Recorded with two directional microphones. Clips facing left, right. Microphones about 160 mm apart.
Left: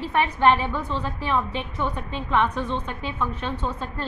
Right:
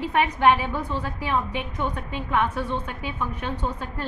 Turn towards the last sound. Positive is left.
turn(degrees=-15)  # may be behind; listen again after turning